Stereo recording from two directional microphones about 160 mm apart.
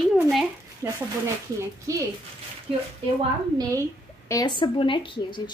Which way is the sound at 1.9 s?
20° right (ahead or behind).